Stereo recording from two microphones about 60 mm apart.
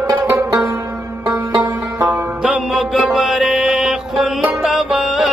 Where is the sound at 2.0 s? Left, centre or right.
Centre.